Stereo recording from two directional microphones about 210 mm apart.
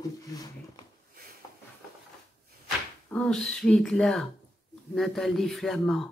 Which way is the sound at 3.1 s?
5° left (ahead or behind).